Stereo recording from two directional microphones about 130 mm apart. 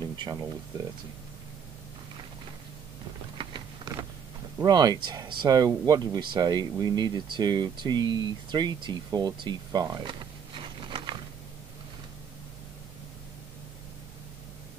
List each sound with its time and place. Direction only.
0.0 s speech: 30° right (ahead or behind)
3.3 s a sound: 30° right (ahead or behind)
4.6 s speech: 30° right (ahead or behind)